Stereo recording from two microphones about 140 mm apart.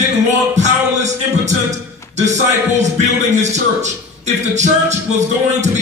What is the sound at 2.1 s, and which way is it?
A man's voice, 55° right (ahead or behind).